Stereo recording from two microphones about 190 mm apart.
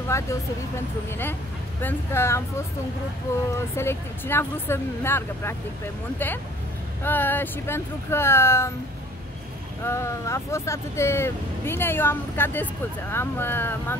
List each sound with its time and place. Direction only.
0.1 s speech: 15° left (ahead or behind)
9.8 s speech: 15° left (ahead or behind)